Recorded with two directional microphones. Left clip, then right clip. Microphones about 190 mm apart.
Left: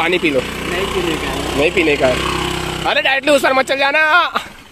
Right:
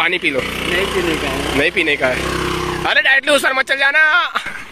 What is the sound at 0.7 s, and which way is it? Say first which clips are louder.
Speech: right 1 dB; 20° left (ahead or behind).